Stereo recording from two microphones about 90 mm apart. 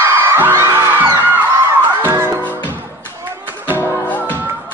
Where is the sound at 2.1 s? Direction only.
30° right (ahead or behind).